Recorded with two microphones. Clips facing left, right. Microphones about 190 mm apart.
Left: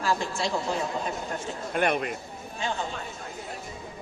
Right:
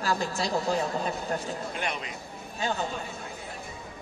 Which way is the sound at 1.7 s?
55° left (ahead or behind).